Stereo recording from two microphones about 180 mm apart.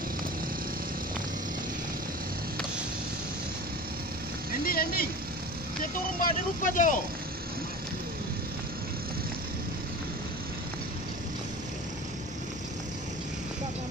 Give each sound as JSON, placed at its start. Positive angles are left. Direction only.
{"t": 4.6, "sound": "vehicle", "side_deg": 55}
{"t": 6.2, "sound": "speech", "side_deg": 45}